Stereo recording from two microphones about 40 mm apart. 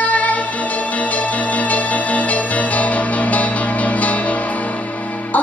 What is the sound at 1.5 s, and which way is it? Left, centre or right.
Music, left.